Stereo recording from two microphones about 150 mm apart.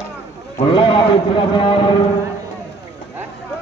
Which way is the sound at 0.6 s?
35° left (ahead or behind).